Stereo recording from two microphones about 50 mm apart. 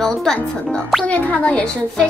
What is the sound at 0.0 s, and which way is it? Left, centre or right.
Speech, centre.